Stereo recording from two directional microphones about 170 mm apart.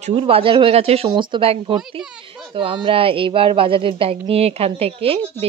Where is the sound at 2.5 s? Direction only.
30° right (ahead or behind).